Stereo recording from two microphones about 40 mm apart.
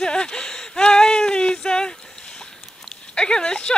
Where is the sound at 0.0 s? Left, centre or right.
Left.